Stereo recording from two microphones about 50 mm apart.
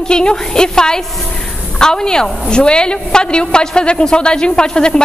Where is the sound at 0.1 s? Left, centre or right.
Centre.